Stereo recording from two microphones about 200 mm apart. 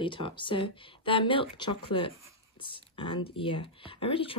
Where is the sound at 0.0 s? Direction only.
25° left (ahead or behind).